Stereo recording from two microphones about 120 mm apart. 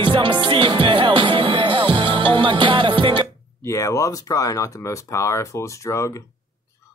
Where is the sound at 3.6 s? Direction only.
25° left (ahead or behind).